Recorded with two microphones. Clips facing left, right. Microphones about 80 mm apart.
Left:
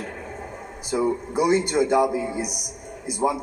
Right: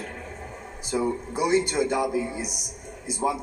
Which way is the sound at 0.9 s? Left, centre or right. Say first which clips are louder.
Left 3 dB; left.